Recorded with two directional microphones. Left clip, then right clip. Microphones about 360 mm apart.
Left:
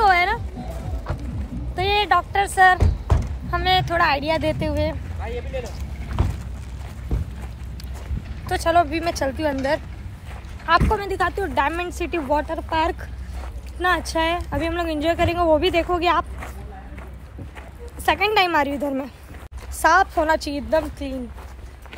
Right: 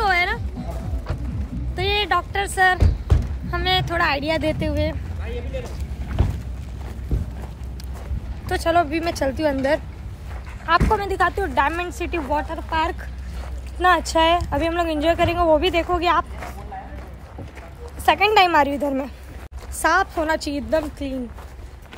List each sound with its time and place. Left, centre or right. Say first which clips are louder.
0.0 s music: left 3 dB; centre
1.8 s a sound: left 2 dB; centre
2.8 s a sound: left 1 dB; centre
3.4 s speech: left 2 dB; centre
5.2 s vehicle: left 2 dB; centre
6.2 s a sound: even; centre
7.1 s boat: even; centre
8.5 s speech: left 1 dB; centre
10.9 s speech: right 2 dB; centre
18.0 s speech: right 3 dB; centre